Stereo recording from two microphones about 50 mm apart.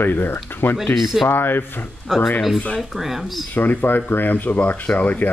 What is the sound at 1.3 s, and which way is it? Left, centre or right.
Speech, left.